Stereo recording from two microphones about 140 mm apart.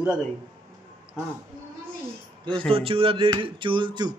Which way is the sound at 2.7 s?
40° right (ahead or behind).